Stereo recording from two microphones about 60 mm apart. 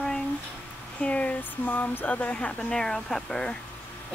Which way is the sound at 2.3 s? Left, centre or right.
Centre.